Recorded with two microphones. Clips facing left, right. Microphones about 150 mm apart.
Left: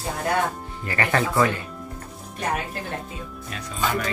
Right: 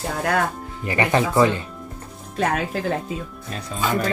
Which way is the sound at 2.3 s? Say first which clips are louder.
Right 5 dB; 90° right.